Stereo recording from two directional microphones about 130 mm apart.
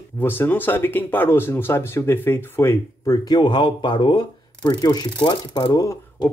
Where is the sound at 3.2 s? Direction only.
35° left (ahead or behind).